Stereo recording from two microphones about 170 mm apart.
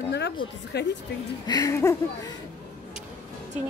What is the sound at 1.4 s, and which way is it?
Speech, 20° left (ahead or behind).